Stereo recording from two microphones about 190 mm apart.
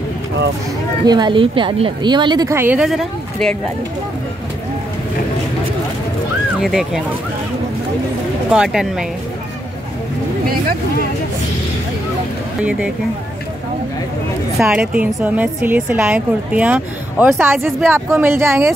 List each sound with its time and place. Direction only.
1.0 s a woman's voice: 20° right (ahead or behind); by 3.5 s centre (ahead or behind)
6.6 s speech: centre (ahead or behind)
8.5 s speech: 5° right (ahead or behind)
12.6 s a woman's voice: 5° right (ahead or behind)
14.6 s a woman's voice: 5° right (ahead or behind)